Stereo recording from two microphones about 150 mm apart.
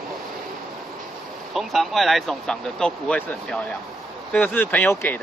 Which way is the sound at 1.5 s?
Centre (ahead or behind).